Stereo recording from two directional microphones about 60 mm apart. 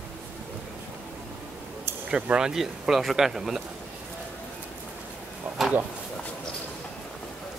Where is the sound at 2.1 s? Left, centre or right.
Centre.